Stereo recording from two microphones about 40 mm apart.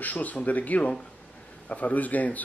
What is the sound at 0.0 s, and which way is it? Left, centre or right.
A man's voice, left.